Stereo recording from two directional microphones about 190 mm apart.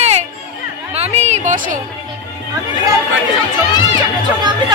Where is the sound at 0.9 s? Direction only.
35° right (ahead or behind).